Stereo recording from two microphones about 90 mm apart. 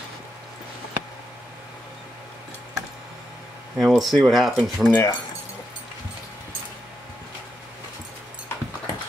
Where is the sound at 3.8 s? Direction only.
Centre (ahead or behind).